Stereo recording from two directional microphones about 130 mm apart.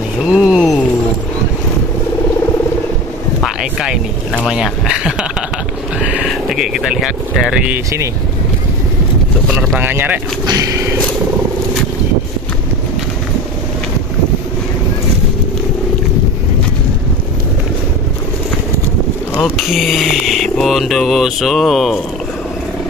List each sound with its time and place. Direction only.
0.2 s speech: 5° right (ahead or behind)
3.4 s speech: 5° right (ahead or behind)
4.5 s a sound: 5° right (ahead or behind)
5.9 s speech: 5° right (ahead or behind)
7.7 s speech: 25° right (ahead or behind)
9.8 s speech: 15° right (ahead or behind)
10.4 s speech: 25° right (ahead or behind)
19.7 s a sound: centre (ahead or behind)